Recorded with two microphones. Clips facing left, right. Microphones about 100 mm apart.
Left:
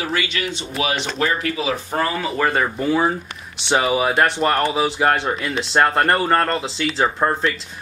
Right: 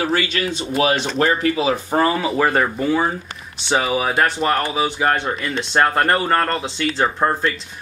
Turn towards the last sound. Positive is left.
turn(degrees=0)  # may be behind; listen again after turning